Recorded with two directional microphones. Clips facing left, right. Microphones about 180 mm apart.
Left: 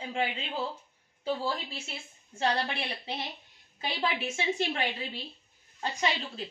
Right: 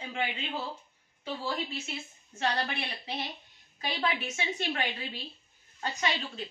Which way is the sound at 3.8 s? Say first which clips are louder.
Left 1 dB; 25° left (ahead or behind).